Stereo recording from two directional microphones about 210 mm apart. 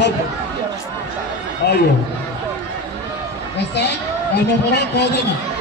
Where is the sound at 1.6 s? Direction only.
50° left (ahead or behind).